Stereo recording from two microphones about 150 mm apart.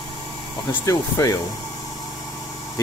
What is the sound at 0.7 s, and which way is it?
Speech, 20° left (ahead or behind).